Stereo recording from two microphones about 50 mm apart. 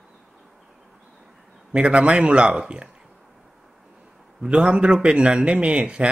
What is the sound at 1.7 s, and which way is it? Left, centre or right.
Speech, right.